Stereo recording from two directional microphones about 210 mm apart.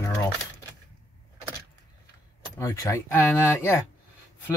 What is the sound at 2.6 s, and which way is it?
Speech, 15° left (ahead or behind).